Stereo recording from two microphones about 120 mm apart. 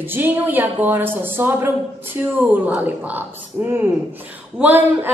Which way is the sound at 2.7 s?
15° right (ahead or behind).